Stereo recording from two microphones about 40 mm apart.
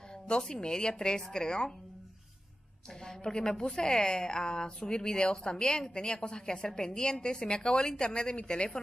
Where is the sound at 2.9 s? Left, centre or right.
Centre.